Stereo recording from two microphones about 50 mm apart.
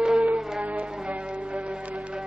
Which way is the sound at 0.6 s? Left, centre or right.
Right.